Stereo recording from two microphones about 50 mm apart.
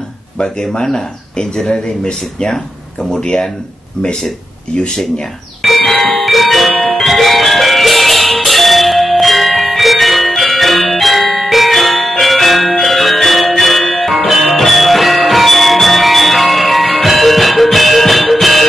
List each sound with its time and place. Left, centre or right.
0.4 s speech: centre
5.6 s bell: centre